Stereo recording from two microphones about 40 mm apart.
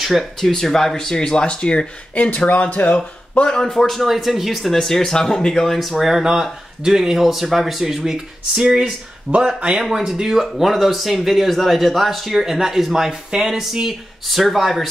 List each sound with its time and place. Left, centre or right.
0.2 s speech: centre
2.1 s speech: left
3.4 s speech: centre
4.7 s speech: centre
9.3 s speech: right
9.8 s speech: centre